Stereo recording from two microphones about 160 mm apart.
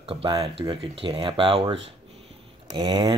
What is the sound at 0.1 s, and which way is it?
Speech, 35° right (ahead or behind).